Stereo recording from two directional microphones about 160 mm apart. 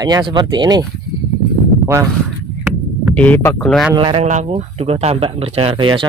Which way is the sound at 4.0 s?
35° right (ahead or behind).